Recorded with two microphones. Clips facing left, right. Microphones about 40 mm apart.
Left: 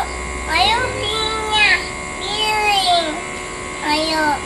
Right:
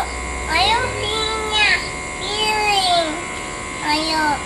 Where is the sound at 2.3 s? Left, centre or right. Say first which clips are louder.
Left 1 dB; centre.